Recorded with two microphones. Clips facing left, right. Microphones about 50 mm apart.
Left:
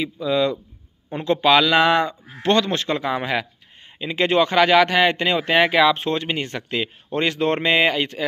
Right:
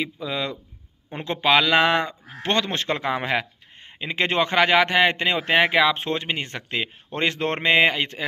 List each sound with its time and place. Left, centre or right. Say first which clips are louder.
0.0 s a man's voice: left 7 dB; right